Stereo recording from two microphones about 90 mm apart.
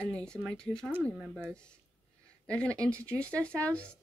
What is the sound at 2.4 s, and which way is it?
Speech, 15° left (ahead or behind).